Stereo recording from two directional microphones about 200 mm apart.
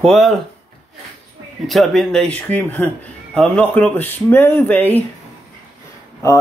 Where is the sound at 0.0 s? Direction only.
Centre (ahead or behind).